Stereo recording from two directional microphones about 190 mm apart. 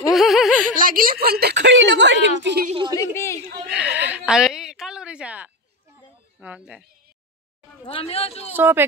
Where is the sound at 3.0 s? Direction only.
15° left (ahead or behind).